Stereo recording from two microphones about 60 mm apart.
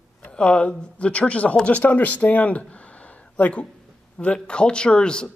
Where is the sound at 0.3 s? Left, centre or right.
Centre.